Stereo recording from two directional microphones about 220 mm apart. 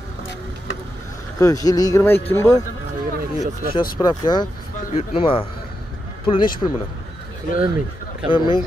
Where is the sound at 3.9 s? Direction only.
20° left (ahead or behind).